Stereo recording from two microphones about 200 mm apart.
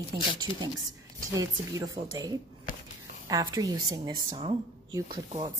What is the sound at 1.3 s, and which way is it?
A woman's voice, 20° right (ahead or behind).